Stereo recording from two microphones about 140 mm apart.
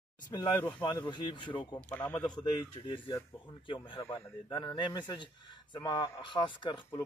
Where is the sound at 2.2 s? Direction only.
30° left (ahead or behind).